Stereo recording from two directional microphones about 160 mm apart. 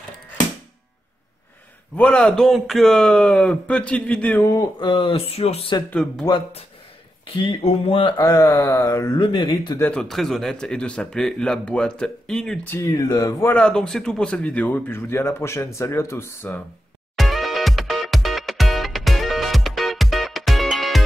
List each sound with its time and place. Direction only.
2.0 s a man's voice: 5° left (ahead or behind)
4.6 s speech: 30° left (ahead or behind)
5.9 s a man's voice: 5° left (ahead or behind)
7.6 s speech: 35° left (ahead or behind)
8.2 s speech: 20° left (ahead or behind)
9.8 s a man's voice: 5° left (ahead or behind)
12.7 s speech: 20° left (ahead or behind)
13.5 s a man's voice: 5° left (ahead or behind)
17.1 s music: centre (ahead or behind)